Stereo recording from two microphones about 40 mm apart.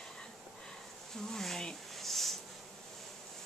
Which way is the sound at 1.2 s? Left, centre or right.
Centre.